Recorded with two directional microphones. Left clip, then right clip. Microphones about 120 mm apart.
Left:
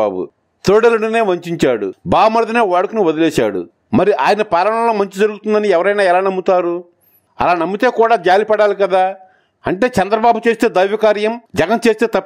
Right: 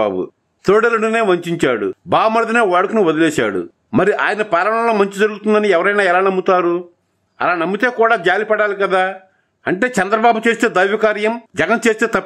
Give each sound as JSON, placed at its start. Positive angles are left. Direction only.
{"t": 0.0, "sound": "a man's voice", "side_deg": 35}
{"t": 4.0, "sound": "a man's voice", "side_deg": 45}